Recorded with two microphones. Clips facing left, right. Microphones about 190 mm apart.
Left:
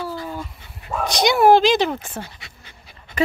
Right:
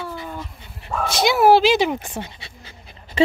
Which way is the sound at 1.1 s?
5° right (ahead or behind).